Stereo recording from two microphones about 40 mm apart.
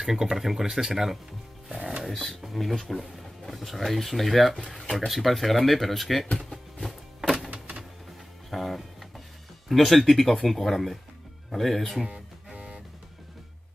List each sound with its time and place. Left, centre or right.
0.0 s speech: centre
1.7 s music: centre
2.0 s speech: centre
6.3 s a sound: centre
7.2 s music: centre
7.5 s a sound: right
8.5 s music: centre
9.7 s speech: centre
12.5 s music: right